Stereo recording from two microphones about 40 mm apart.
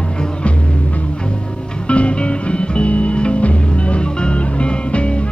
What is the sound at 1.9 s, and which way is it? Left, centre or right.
Music, left.